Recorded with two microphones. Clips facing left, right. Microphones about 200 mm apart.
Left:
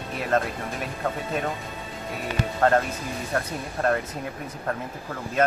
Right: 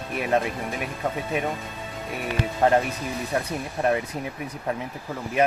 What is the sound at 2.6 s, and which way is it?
Speech, 15° right (ahead or behind).